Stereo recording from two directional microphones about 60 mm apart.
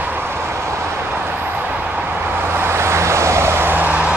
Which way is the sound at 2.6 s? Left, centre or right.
Right.